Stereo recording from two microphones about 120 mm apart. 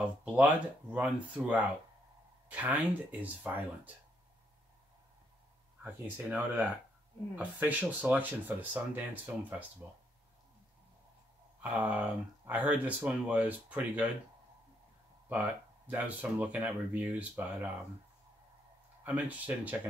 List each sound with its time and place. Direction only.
0.0 s speech: 10° right (ahead or behind)
6.0 s speech: 15° right (ahead or behind)
11.6 s speech: 15° right (ahead or behind)
15.2 s speech: 15° right (ahead or behind)
19.0 s speech: 10° right (ahead or behind)